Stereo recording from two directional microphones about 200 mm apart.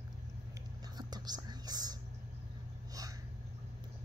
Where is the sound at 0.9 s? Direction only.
20° right (ahead or behind).